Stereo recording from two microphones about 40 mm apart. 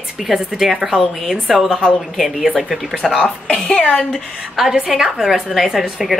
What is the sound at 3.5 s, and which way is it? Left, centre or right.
Speech, left.